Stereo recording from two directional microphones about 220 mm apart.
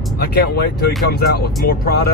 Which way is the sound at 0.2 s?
45° left (ahead or behind).